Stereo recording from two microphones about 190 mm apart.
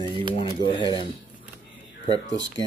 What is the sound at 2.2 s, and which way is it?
Speech, 75° left (ahead or behind).